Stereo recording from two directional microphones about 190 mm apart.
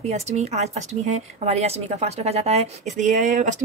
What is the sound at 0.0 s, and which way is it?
A woman's voice, 35° right (ahead or behind).